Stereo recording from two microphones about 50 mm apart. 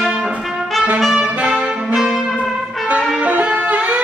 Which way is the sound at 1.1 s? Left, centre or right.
Right.